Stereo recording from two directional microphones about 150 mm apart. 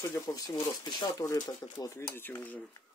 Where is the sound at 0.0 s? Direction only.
20° left (ahead or behind).